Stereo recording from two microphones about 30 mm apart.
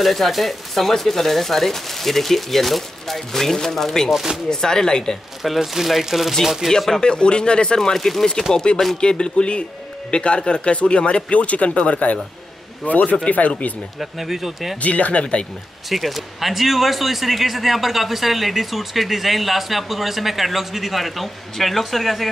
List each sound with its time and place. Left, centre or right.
0.0 s speech: centre; by 5.1 s left
5.4 s speech: centre
6.6 s speech: centre
7.0 s speech: left
7.8 s speech: centre
8.7 s speech: left
13.9 s speech: centre
14.8 s speech: left
15.9 s speech: centre